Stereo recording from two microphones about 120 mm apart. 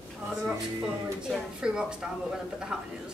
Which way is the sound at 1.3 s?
5° right (ahead or behind).